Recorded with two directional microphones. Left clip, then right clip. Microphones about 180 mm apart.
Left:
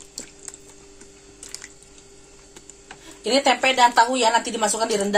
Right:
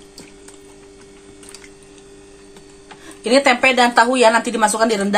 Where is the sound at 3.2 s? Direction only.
25° right (ahead or behind).